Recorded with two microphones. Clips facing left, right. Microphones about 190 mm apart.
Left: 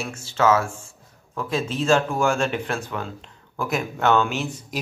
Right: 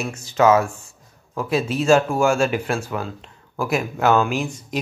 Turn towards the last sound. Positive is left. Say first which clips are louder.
# even
turn(degrees=5)  # may be behind; listen again after turning